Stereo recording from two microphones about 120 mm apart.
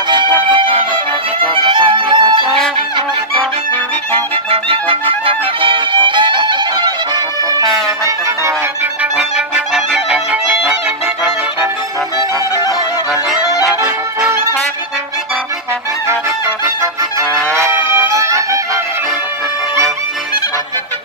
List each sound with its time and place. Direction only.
0.1 s music: 40° right (ahead or behind)
4.1 s music: 50° right (ahead or behind)
17.6 s music: 25° right (ahead or behind)